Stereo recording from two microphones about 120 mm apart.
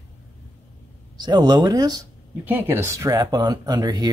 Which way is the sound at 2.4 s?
15° right (ahead or behind).